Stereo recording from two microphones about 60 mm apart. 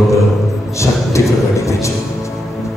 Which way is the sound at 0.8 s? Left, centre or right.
Left.